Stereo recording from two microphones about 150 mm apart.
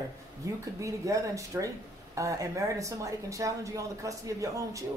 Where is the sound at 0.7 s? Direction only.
20° right (ahead or behind).